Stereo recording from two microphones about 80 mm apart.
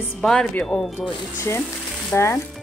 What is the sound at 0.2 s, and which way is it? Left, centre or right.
Speech, centre.